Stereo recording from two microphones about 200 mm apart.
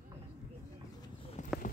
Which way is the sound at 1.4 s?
40° left (ahead or behind).